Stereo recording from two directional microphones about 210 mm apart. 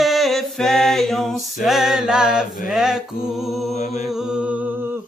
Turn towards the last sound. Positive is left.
turn(degrees=-10)  # may be behind; listen again after turning